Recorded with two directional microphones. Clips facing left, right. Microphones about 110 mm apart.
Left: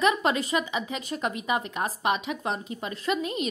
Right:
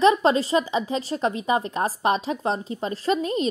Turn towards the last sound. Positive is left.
turn(degrees=-35)  # may be behind; listen again after turning